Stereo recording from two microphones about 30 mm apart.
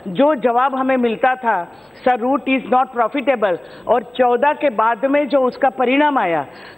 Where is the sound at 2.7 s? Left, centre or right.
Left.